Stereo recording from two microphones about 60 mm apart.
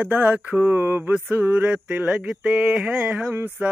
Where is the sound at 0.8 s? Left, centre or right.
Right.